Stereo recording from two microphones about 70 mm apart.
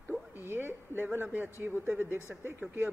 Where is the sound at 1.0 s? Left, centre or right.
Right.